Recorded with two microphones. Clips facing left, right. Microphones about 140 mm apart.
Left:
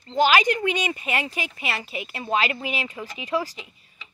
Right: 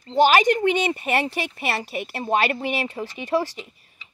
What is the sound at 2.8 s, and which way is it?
Speech, 35° right (ahead or behind).